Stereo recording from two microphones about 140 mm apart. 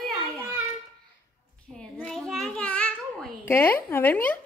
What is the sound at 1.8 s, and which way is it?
Babbling, 5° left (ahead or behind).